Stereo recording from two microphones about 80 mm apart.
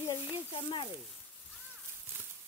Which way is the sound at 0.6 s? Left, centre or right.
Left.